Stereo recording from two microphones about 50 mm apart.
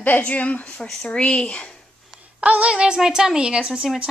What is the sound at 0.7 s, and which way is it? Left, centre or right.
Speech, centre.